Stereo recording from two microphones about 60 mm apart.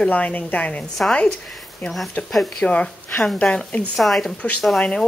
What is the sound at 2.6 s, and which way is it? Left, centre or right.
Speech, left.